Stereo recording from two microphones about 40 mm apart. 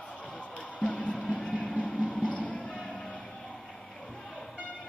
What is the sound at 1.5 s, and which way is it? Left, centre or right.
Vehicle, left.